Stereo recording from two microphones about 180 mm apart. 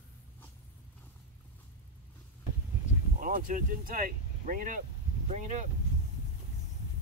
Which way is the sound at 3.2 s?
50° right (ahead or behind).